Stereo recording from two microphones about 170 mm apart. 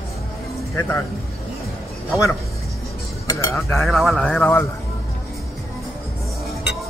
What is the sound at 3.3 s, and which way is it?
Cutlery, 20° left (ahead or behind).